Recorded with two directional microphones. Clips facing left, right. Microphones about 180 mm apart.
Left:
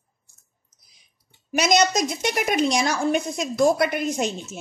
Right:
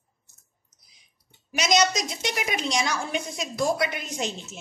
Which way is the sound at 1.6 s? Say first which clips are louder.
Left 3 dB; 55° left (ahead or behind).